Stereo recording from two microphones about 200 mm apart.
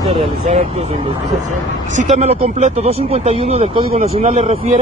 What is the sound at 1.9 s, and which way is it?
Speech, 35° right (ahead or behind).